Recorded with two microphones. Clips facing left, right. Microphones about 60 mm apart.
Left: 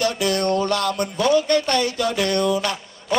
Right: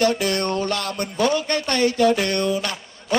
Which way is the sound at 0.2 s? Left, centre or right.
Right.